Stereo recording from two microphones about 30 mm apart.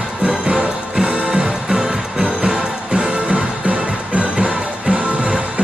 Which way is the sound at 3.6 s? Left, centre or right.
Right.